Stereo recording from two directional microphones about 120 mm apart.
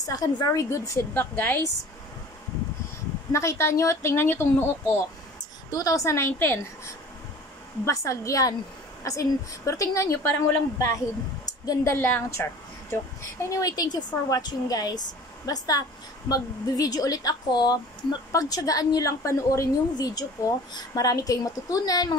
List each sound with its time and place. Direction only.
0.0 s a woman's voice: 30° left (ahead or behind)
1.1 s a woman's voice: 15° left (ahead or behind)
3.3 s a woman's voice: 25° left (ahead or behind)
5.7 s a woman's voice: 30° left (ahead or behind)
7.8 s a woman's voice: 25° left (ahead or behind)